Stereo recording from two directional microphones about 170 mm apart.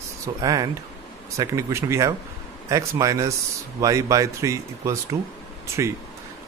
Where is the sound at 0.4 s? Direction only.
20° right (ahead or behind).